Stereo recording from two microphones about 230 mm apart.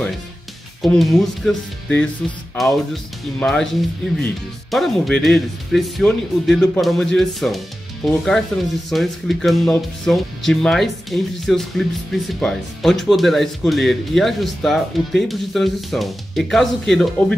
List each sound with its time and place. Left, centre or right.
0.8 s speech: centre